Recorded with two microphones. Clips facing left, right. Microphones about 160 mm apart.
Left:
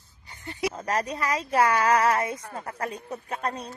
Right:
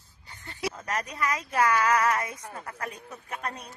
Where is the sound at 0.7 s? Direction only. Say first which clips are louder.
Left 4 dB; 35° left (ahead or behind).